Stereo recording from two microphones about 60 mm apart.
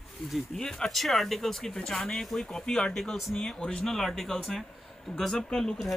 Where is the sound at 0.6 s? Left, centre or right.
Centre.